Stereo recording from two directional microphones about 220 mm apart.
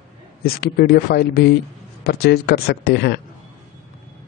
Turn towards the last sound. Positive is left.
turn(degrees=50)  # may be behind; listen again after turning